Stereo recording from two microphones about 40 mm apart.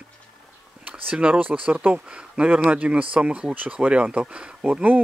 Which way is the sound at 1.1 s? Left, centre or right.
Right.